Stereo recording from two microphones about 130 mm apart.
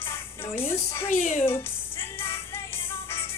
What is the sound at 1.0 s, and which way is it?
Speech, 70° left (ahead or behind).